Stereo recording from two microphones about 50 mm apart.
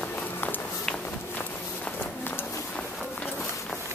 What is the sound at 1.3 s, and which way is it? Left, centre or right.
Run, left.